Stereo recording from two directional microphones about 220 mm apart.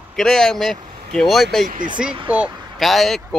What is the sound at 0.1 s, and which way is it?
Speech, centre (ahead or behind).